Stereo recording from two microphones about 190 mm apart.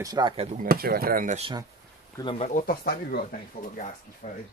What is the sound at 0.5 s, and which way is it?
Speech, 50° right (ahead or behind).